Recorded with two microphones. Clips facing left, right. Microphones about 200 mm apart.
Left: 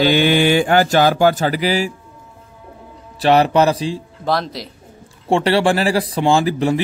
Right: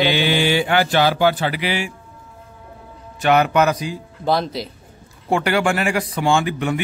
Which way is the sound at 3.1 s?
30° left (ahead or behind).